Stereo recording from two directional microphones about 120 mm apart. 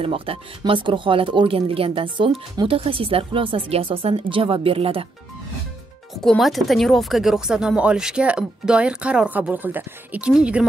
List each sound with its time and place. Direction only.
0.0 s speech: 50° right (ahead or behind)
6.2 s speech: centre (ahead or behind)